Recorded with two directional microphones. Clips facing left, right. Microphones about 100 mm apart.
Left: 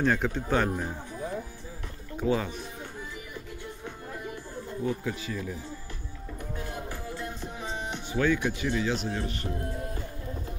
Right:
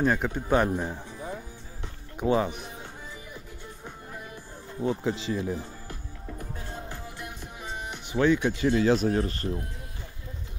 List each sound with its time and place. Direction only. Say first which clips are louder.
0.0 s speech: right 1 dB; 10° right (ahead or behind)
2.1 s speech: right 3 dB; 20° right (ahead or behind)
4.8 s speech: right 5 dB; 25° right (ahead or behind)
6.9 s music: left 3 dB; 20° right (ahead or behind)
7.6 s music: left 2 dB; 5° right (ahead or behind)
8.1 s speech: right 3 dB; 20° right (ahead or behind); by 9.5 s 40° right (ahead or behind)